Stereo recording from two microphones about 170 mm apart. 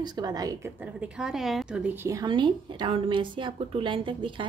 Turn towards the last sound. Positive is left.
turn(degrees=-30)  # may be behind; listen again after turning